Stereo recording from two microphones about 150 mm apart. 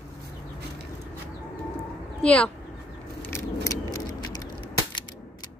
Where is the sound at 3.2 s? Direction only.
20° left (ahead or behind).